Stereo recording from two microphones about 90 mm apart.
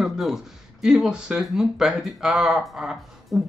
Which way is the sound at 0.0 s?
5° right (ahead or behind).